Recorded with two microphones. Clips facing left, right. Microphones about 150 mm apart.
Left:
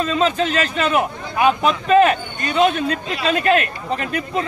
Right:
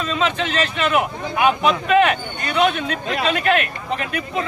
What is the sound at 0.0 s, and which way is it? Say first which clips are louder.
Speech: left 3 dB; 40° left (ahead or behind).